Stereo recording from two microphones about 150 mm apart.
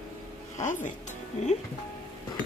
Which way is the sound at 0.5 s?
55° left (ahead or behind).